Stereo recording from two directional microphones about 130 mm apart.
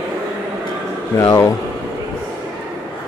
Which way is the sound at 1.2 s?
25° left (ahead or behind).